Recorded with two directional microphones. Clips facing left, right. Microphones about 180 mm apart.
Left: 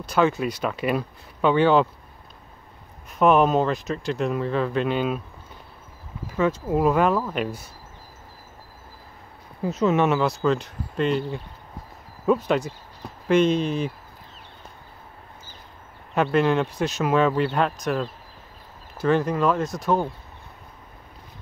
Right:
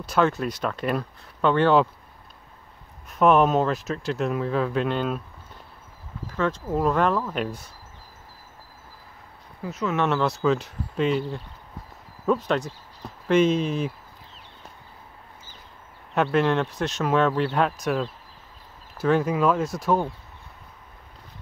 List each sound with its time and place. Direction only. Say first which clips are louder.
0.0 s speech: left 1 dB; centre (ahead or behind)
3.1 s speech: even; centre (ahead or behind)
6.2 s speech: left 3 dB; 10° left (ahead or behind)
9.6 s speech: left 5 dB; 25° left (ahead or behind)
10.0 s speech: left 1 dB; 5° left (ahead or behind)
16.2 s speech: left 1 dB; centre (ahead or behind)